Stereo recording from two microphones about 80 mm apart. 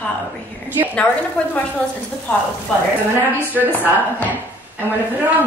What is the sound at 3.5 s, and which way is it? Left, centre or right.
Speech, right.